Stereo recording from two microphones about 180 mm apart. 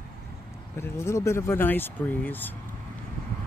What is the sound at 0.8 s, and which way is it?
Speech, 15° left (ahead or behind).